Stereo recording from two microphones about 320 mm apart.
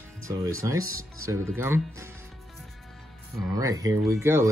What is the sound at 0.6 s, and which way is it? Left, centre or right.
Speech, centre.